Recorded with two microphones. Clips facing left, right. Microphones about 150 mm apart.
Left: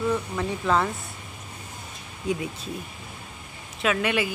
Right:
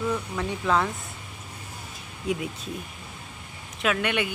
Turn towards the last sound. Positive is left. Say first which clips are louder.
# left 1 dB
turn(degrees=0)  # may be behind; listen again after turning